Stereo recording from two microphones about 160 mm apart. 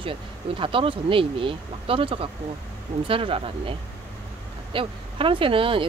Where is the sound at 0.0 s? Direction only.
35° right (ahead or behind).